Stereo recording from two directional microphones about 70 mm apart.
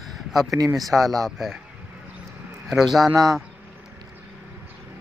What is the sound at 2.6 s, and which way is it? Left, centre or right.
Speech, centre.